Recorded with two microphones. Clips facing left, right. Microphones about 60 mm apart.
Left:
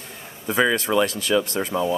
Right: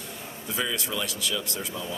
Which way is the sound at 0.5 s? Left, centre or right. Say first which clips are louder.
Left 11 dB; left.